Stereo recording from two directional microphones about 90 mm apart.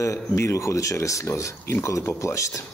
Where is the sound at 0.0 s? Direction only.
35° left (ahead or behind).